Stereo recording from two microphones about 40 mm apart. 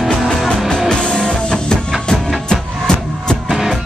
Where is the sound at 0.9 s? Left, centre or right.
Left.